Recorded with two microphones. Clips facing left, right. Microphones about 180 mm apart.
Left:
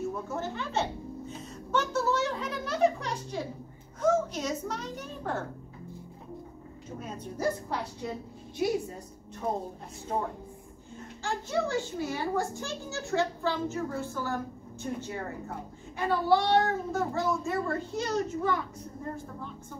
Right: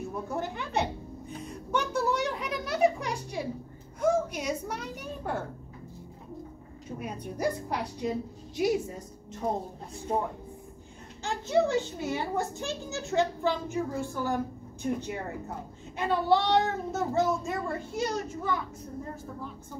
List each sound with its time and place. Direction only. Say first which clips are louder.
0.3 s speech: right 1 dB; 15° right (ahead or behind)
7.0 s a child's voice: right 2 dB; 15° right (ahead or behind)